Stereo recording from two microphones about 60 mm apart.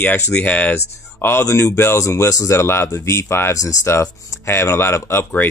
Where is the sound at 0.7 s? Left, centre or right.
Left.